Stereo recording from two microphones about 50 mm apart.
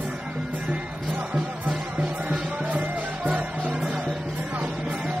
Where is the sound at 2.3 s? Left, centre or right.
Right.